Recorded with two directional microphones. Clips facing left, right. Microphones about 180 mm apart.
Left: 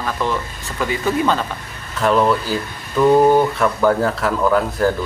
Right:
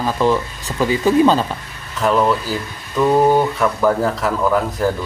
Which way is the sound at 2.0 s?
Centre (ahead or behind).